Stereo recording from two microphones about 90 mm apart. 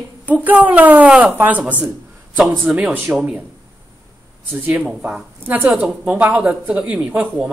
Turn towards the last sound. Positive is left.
turn(degrees=-15)  # may be behind; listen again after turning